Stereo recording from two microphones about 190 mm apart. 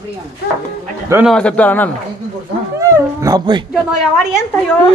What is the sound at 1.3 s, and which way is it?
Speech, 5° left (ahead or behind).